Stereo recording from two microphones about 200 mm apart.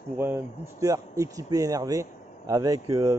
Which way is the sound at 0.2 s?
15° right (ahead or behind).